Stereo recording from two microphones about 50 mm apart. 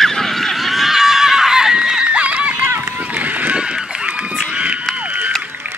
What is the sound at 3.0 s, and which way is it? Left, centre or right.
Run, right.